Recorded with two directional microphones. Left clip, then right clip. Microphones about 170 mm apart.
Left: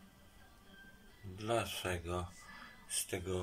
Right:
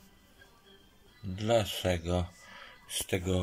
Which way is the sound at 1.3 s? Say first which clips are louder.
Right 8 dB; 25° right (ahead or behind).